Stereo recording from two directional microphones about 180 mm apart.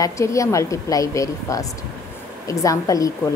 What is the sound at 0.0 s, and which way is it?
A woman's voice, 15° left (ahead or behind).